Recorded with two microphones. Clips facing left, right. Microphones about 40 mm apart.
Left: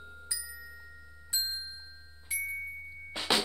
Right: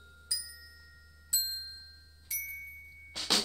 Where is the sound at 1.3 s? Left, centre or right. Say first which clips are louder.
Left 2 dB; left.